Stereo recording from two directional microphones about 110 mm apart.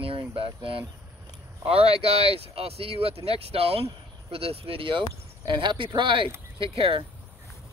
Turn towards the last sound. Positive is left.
turn(degrees=-55)  # may be behind; listen again after turning